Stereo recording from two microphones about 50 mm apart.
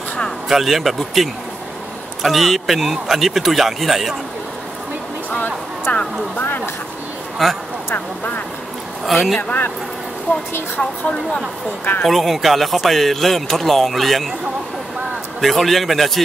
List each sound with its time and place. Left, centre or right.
0.5 s a man's voice: centre
5.9 s a man's voice: left
7.4 s a man's voice: centre
9.0 s a man's voice: centre
9.4 s a man's voice: left
10.8 s speech: left
12.1 s a man's voice: centre
15.4 s a man's voice: centre